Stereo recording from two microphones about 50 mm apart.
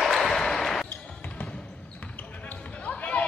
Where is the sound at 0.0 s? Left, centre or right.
Centre.